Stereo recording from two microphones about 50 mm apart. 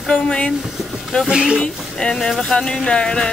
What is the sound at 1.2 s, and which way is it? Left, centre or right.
Speech, centre.